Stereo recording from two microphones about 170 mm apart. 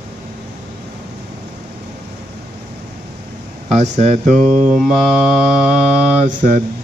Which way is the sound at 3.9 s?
45° right (ahead or behind).